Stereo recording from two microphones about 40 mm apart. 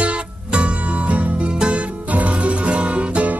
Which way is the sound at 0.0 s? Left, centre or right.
Right.